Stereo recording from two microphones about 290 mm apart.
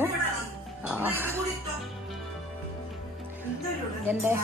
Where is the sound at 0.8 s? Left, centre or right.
Centre.